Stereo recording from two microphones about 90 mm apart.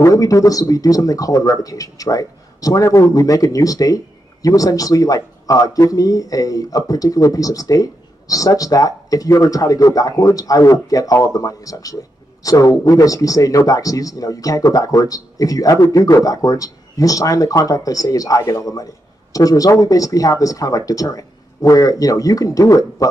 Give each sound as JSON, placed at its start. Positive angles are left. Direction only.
{"t": 0.0, "sound": "speech", "side_deg": 40}